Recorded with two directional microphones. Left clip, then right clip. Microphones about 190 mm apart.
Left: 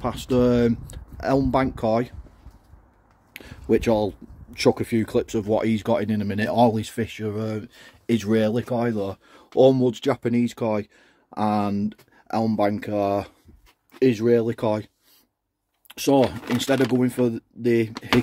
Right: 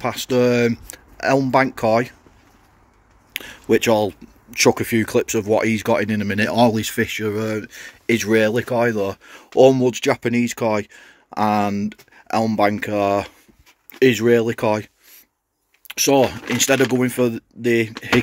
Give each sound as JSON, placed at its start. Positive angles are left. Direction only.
{"t": 0.0, "sound": "speech", "side_deg": 20}
{"t": 3.3, "sound": "speech", "side_deg": 10}
{"t": 15.9, "sound": "speech", "side_deg": 20}